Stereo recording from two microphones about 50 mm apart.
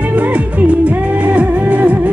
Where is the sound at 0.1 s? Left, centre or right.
Right.